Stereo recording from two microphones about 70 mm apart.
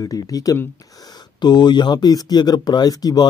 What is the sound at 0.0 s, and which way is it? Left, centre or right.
Speech, left.